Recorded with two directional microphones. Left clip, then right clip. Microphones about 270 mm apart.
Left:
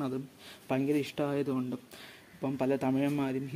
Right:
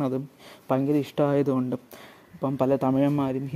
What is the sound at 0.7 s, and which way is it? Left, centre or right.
Speech, right.